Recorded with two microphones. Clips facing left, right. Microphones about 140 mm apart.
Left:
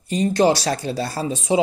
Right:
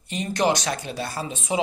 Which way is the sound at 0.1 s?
30° left (ahead or behind).